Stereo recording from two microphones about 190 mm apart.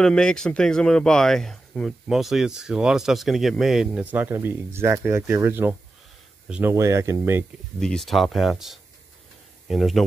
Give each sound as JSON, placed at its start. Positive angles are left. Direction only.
{"t": 0.0, "sound": "speech", "side_deg": 5}
{"t": 7.8, "sound": "speech", "side_deg": 0}